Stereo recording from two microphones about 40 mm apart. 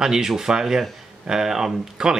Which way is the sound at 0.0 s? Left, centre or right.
Centre.